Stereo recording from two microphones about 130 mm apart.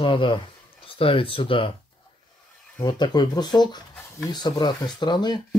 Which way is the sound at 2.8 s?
35° left (ahead or behind).